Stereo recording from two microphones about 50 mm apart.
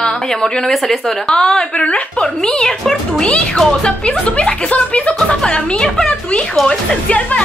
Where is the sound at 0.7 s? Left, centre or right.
Centre; by 6.4 s left.